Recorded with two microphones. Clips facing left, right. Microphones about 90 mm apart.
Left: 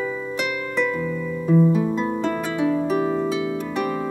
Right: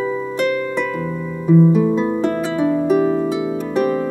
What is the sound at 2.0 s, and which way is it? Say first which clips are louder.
Music: right 5 dB; 20° right (ahead or behind).